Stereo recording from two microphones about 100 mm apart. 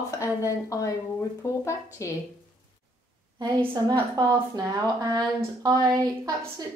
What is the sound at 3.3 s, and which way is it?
A woman's voice, 40° right (ahead or behind).